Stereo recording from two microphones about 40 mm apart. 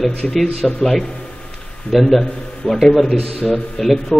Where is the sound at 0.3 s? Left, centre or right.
Centre.